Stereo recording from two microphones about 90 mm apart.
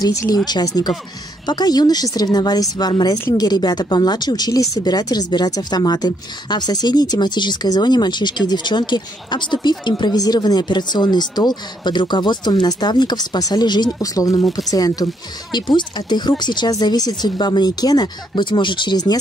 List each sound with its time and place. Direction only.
0.0 s speech: 40° left (ahead or behind)
15.5 s speech: 55° left (ahead or behind)